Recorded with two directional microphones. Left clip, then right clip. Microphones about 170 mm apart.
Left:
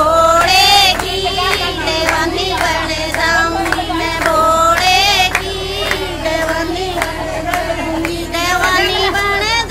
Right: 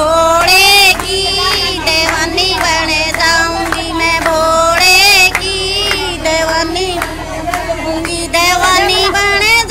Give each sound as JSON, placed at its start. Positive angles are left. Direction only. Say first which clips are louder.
{"t": 0.1, "sound": "child singing", "louder": "right 1 dB", "side_deg": -10}
{"t": 4.0, "sound": "music", "louder": "right 3 dB", "side_deg": -15}
{"t": 8.4, "sound": "child singing", "louder": "right 4 dB", "side_deg": -20}